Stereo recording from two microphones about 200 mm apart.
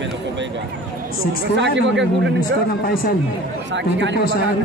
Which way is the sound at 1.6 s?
65° right (ahead or behind).